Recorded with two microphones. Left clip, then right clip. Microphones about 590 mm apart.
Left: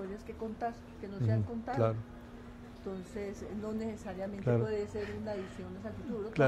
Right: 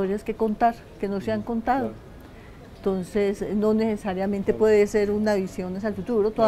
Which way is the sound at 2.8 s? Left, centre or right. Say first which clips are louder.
Right 17 dB; right.